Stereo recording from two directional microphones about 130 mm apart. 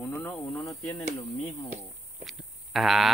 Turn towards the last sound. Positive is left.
turn(degrees=0)  # may be behind; listen again after turning